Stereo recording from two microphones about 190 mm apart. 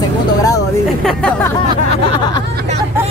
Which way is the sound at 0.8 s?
Centre (ahead or behind).